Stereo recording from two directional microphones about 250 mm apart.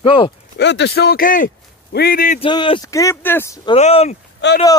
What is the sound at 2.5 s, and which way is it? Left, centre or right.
Speech, centre.